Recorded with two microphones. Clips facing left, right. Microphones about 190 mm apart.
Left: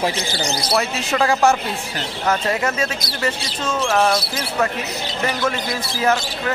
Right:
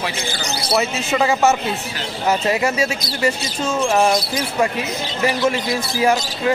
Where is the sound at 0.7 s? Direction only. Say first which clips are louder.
Right 2 dB; 5° right (ahead or behind).